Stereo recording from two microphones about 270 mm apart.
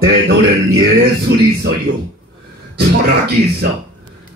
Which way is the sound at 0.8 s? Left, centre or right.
Right.